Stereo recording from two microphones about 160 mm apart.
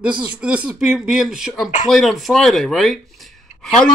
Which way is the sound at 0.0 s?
5° right (ahead or behind).